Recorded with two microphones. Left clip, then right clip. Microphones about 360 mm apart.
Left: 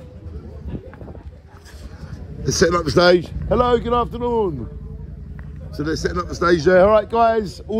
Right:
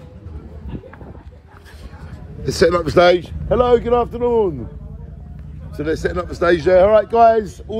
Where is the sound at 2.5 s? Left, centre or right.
Centre.